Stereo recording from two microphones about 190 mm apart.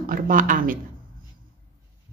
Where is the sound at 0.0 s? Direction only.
45° right (ahead or behind).